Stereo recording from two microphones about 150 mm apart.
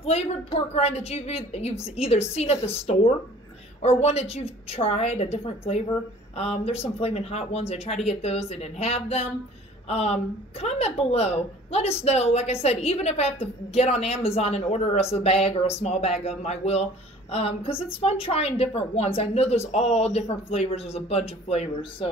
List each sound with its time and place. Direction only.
0.0 s speech: 45° left (ahead or behind)